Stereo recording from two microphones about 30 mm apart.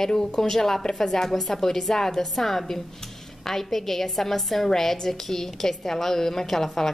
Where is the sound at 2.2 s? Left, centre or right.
Centre.